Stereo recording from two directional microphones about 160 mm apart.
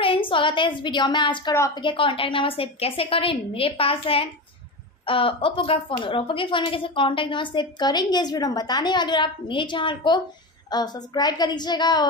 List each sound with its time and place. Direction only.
0.0 s a woman's voice: 30° left (ahead or behind)